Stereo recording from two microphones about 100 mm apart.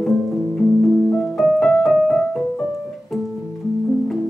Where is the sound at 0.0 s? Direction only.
Centre (ahead or behind).